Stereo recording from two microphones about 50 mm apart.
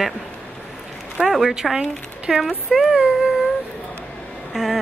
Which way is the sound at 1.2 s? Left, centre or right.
Centre.